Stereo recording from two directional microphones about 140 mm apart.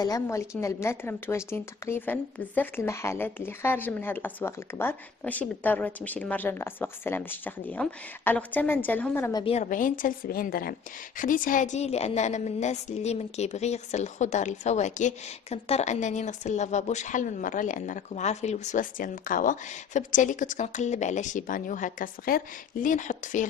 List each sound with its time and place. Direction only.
0.0 s a woman's voice: 25° left (ahead or behind)
9.5 s a woman's voice: 60° left (ahead or behind)